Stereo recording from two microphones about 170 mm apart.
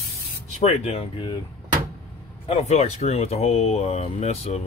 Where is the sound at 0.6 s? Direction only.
35° left (ahead or behind).